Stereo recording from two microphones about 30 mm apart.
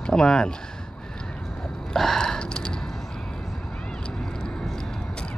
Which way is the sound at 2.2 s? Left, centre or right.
Left.